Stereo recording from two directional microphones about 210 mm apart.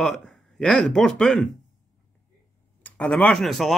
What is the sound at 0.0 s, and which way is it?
Speech, centre (ahead or behind).